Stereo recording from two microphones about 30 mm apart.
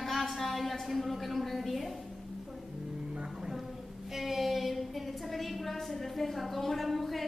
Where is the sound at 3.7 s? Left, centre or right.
Centre.